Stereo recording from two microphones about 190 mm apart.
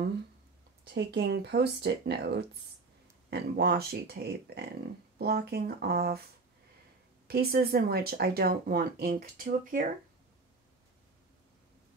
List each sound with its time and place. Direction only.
0.8 s speech: 65° right (ahead or behind)
7.2 s speech: 55° right (ahead or behind)